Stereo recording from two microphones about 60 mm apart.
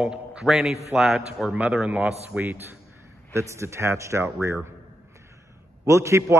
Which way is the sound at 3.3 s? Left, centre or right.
Right.